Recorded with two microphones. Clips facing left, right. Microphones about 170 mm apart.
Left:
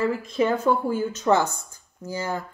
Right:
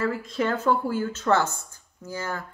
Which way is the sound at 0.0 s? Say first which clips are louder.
Left 3 dB; 15° left (ahead or behind).